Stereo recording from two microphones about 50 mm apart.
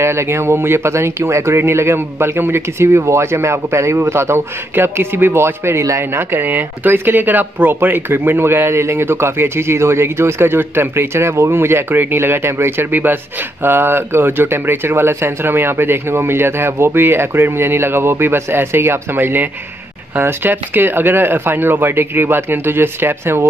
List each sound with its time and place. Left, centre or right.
0.0 s speech: right